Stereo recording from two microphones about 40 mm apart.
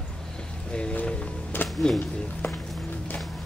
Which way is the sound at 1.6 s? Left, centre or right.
Left.